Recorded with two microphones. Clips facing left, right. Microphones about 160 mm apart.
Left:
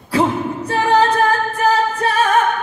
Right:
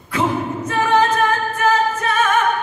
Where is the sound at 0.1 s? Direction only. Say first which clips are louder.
Left 3 dB; 35° left (ahead or behind).